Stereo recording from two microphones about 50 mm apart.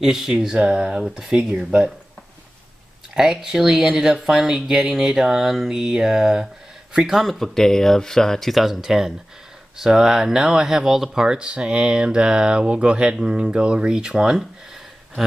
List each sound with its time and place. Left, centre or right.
0.0 s speech: centre
3.2 s speech: centre